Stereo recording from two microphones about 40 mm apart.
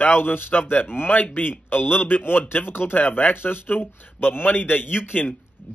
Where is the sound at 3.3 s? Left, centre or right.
Left.